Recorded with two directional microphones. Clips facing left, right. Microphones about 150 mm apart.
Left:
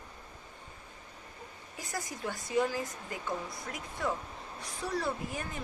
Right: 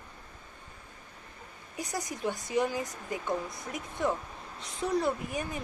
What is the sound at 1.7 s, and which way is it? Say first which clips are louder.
Speech: right 4 dB; 20° right (ahead or behind).